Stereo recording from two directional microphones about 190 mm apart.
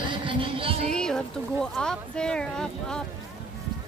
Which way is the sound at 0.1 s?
25° right (ahead or behind).